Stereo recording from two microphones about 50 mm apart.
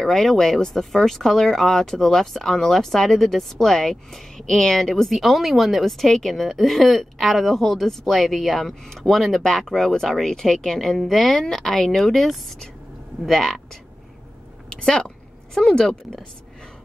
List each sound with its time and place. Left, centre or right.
0.0 s a woman's voice: centre
14.8 s a woman's voice: centre